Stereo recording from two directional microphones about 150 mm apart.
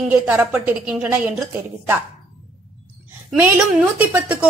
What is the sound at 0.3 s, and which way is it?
Speech, 10° right (ahead or behind).